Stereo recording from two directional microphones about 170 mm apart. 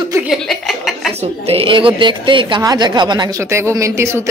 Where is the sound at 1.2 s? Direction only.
35° right (ahead or behind).